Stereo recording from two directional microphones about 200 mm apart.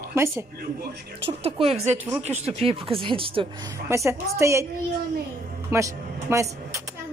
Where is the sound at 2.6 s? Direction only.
30° right (ahead or behind).